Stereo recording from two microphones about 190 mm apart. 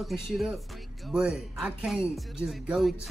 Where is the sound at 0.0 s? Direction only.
Centre (ahead or behind).